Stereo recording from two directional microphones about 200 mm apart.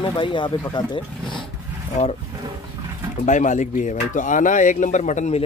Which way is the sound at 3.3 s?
40° left (ahead or behind).